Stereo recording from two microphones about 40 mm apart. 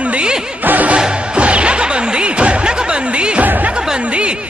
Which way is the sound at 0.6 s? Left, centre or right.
Right.